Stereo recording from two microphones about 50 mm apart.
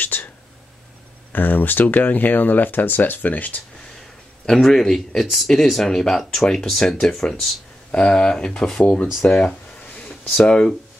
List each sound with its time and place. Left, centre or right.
0.0 s whispering: left
1.3 s speech: left
4.5 s speech: centre
7.9 s speech: left
9.2 s speech: centre